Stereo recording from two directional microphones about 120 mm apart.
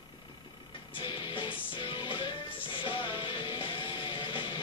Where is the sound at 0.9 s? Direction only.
45° left (ahead or behind).